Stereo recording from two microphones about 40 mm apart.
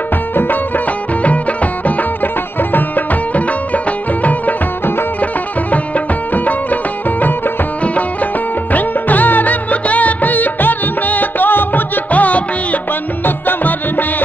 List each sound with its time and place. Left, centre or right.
0.4 s music: left
1.2 s music: left
3.3 s music: left
7.8 s music: left
8.7 s music: left
13.2 s music: left